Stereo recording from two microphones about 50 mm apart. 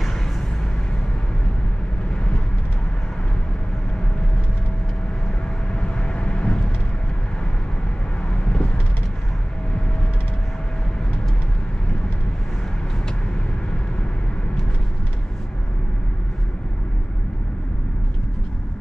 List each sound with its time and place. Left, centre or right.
5.8 s vehicle: left
8.3 s vehicle: left